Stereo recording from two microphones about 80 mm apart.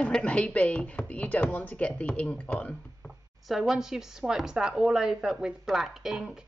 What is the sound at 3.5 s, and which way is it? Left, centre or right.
A woman's voice, centre.